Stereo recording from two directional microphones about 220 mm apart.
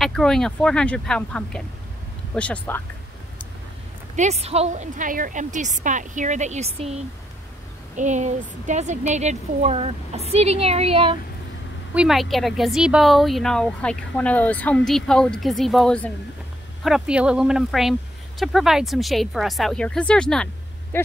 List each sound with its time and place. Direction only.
0.0 s speech: centre (ahead or behind)
4.2 s a woman's voice: 30° right (ahead or behind)
11.9 s speech: 5° right (ahead or behind)
20.9 s a sound: 10° left (ahead or behind)